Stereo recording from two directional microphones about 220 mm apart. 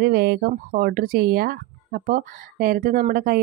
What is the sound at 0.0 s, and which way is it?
Speech, 45° right (ahead or behind).